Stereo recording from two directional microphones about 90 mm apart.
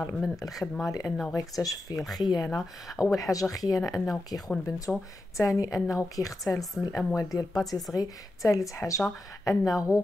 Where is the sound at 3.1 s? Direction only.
40° left (ahead or behind).